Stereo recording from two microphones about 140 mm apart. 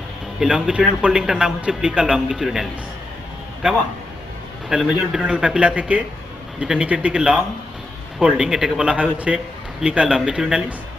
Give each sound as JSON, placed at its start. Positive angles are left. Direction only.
{"t": 0.4, "sound": "a man's voice", "side_deg": -5}
{"t": 4.6, "sound": "a man's voice", "side_deg": -5}